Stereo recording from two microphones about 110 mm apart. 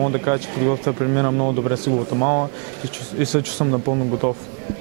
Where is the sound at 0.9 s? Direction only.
20° right (ahead or behind).